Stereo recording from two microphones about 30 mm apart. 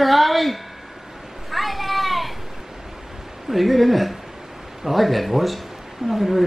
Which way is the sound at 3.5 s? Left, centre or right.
Centre.